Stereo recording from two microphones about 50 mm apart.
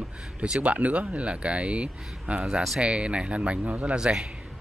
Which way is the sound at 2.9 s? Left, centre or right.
Right.